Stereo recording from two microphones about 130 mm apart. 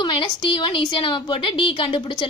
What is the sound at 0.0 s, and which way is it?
A woman's voice, 40° left (ahead or behind).